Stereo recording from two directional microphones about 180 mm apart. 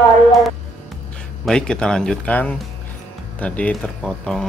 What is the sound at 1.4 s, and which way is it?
Speech, 5° left (ahead or behind).